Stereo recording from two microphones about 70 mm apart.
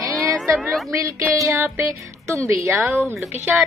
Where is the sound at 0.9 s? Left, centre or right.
Right.